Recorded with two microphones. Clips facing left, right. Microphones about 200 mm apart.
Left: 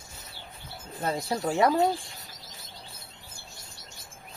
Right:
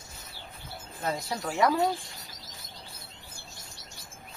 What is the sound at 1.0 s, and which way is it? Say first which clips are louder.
Speech: left 4 dB; 30° left (ahead or behind).